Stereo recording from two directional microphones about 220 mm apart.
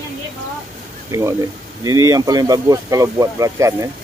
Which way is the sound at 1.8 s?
15° right (ahead or behind).